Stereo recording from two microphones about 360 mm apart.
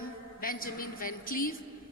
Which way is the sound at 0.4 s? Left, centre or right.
Left.